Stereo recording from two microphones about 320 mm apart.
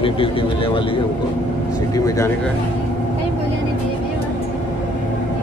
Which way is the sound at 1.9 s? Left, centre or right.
Centre.